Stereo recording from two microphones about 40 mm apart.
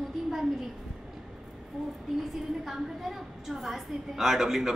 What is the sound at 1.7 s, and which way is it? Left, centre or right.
Speech, centre.